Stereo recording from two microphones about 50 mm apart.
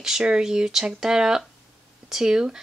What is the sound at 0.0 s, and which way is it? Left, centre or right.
Speech, centre.